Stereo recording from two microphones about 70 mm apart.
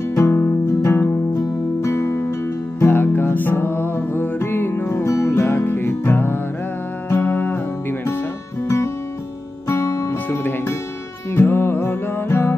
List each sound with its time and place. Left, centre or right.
0.1 s music: left
8.6 s music: left